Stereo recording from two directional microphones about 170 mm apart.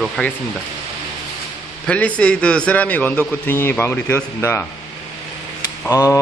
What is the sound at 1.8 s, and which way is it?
A man's voice, 10° left (ahead or behind).